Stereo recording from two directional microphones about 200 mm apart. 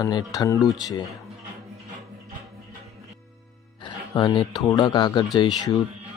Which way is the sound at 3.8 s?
20° left (ahead or behind).